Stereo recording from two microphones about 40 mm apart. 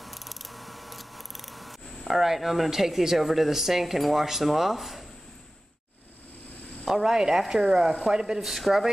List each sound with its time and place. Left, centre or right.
0.0 s scissors: centre
6.9 s speech: centre
8.4 s speech: centre